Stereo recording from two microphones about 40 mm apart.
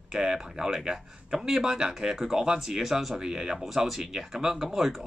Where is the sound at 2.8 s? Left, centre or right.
Centre.